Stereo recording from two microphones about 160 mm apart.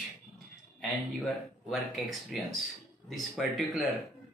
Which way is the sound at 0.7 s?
Centre (ahead or behind).